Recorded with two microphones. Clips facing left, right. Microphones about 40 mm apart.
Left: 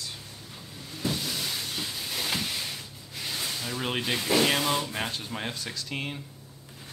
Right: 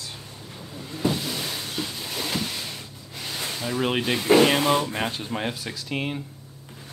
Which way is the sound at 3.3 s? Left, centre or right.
Right.